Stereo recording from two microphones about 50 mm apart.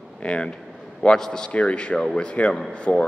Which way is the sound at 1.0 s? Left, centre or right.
Centre.